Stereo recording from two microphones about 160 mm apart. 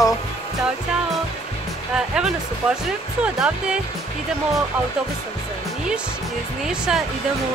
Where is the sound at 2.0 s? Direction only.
5° right (ahead or behind).